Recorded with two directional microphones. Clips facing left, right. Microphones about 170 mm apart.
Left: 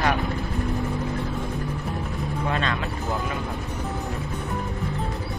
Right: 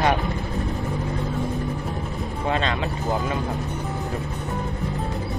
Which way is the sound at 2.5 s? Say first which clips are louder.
Right 3 dB; 25° right (ahead or behind).